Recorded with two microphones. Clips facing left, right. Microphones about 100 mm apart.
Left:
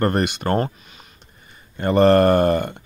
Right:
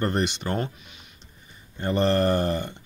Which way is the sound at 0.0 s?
55° left (ahead or behind).